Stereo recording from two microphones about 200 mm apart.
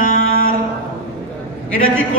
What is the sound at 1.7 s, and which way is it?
Speech, 85° left.